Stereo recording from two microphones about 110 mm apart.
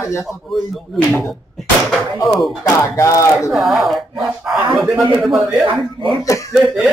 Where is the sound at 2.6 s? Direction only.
30° left (ahead or behind).